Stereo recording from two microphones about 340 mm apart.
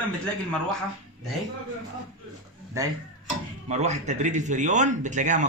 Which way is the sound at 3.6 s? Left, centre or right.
Centre.